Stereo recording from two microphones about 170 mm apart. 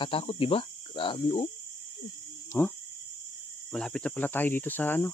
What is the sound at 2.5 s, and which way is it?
Speech, 10° left (ahead or behind).